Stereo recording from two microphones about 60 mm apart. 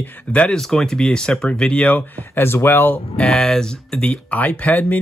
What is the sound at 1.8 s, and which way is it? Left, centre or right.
Speech, left.